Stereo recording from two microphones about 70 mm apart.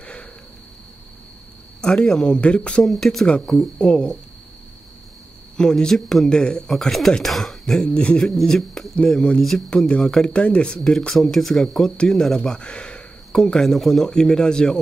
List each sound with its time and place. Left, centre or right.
0.0 s a sound: centre
1.8 s speech: centre
2.8 s speech: centre
5.6 s speech: centre
7.8 s speech: centre
8.3 s speech: centre